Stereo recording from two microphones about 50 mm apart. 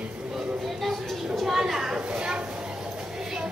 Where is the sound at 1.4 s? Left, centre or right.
Centre.